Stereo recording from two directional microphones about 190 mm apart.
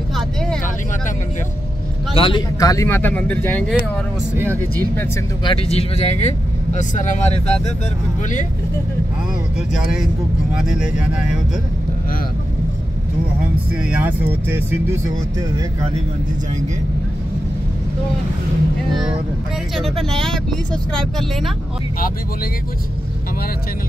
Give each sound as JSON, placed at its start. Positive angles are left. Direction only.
{"t": 0.1, "sound": "vehicle", "side_deg": 5}
{"t": 2.1, "sound": "speech", "side_deg": 25}
{"t": 5.4, "sound": "speech", "side_deg": 30}
{"t": 10.6, "sound": "speech", "side_deg": -5}
{"t": 13.7, "sound": "speech", "side_deg": -5}
{"t": 20.1, "sound": "speech", "side_deg": 0}